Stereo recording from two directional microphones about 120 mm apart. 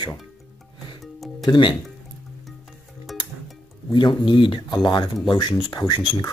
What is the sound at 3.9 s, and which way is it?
Speech, 40° left (ahead or behind).